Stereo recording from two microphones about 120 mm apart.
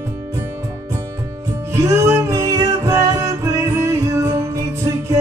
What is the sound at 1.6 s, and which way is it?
Music, 25° right (ahead or behind).